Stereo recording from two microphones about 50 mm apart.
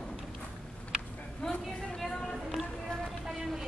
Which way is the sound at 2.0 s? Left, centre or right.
Centre.